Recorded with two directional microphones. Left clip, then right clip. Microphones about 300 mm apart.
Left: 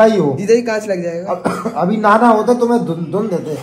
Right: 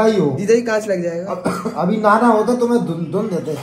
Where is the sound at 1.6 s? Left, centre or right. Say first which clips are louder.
Left 3 dB; left.